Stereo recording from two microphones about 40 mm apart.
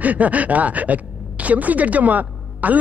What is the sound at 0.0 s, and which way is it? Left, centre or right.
A woman's voice, right.